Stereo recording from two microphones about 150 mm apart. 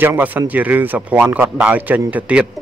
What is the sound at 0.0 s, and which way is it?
A man's voice, 15° right (ahead or behind).